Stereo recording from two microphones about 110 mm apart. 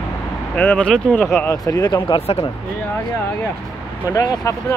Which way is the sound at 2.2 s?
70° left (ahead or behind).